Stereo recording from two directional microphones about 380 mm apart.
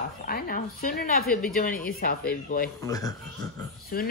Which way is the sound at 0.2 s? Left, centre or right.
Left.